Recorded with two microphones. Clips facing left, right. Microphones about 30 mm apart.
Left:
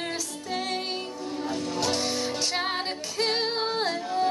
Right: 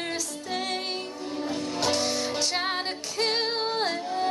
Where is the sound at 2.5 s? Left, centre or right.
Centre.